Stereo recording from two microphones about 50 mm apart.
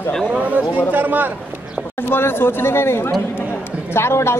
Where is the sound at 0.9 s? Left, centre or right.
Right.